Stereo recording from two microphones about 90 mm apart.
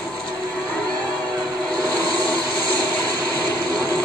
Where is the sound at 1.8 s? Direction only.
45° right (ahead or behind).